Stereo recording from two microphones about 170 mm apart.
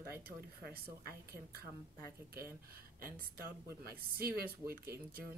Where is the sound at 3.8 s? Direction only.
65° right (ahead or behind).